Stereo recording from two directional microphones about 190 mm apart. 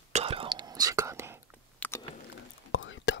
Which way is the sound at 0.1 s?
30° right (ahead or behind).